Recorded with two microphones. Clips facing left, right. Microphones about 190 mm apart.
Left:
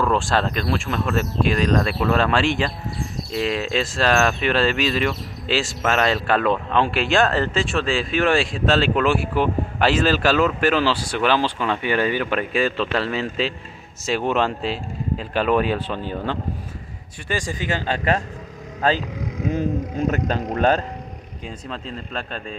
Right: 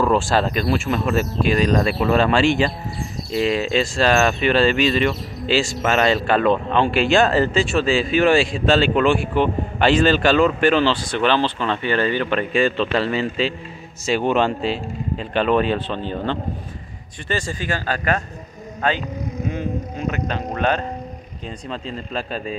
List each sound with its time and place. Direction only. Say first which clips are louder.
0.0 s speech: right 3 dB; 5° right (ahead or behind); by 19.0 s 35° left (ahead or behind)
20.1 s speech: even; 45° left (ahead or behind)
21.5 s speech: right 2 dB; centre (ahead or behind)